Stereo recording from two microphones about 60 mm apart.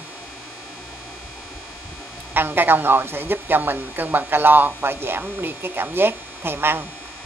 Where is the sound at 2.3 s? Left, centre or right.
Right.